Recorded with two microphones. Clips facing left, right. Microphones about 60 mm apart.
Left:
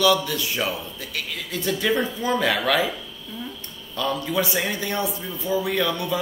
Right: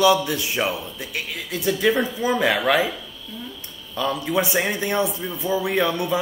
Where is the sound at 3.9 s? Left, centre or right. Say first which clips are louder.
Right 2 dB; centre.